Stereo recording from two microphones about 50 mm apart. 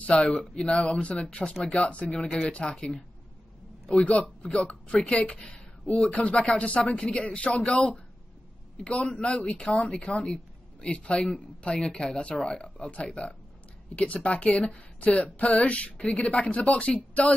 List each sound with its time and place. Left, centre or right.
0.0 s speech: centre
3.9 s speech: left
15.0 s a sound: left
15.3 s speech: left